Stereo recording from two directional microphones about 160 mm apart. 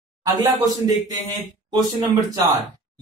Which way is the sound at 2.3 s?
20° right (ahead or behind).